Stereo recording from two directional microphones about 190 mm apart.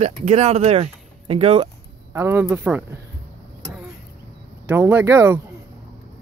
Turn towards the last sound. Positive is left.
turn(degrees=-15)  # may be behind; listen again after turning